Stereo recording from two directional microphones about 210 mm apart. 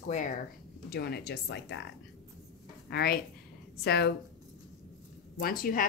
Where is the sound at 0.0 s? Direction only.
35° left (ahead or behind).